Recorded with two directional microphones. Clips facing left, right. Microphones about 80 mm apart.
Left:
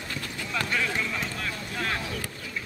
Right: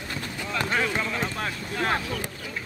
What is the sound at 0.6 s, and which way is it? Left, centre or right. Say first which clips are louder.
Speech: right 3 dB; right.